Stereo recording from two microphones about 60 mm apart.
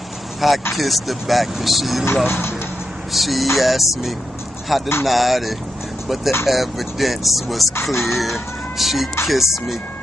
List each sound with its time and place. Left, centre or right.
0.4 s speech: centre
2.2 s speech: left
3.1 s speech: centre